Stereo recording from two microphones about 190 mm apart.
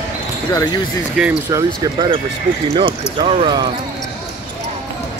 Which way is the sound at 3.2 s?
30° right (ahead or behind).